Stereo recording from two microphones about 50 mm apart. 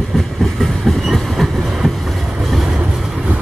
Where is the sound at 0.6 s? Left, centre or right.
Centre.